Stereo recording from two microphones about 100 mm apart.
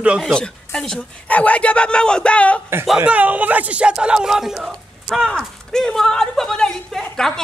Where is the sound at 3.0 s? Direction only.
15° right (ahead or behind).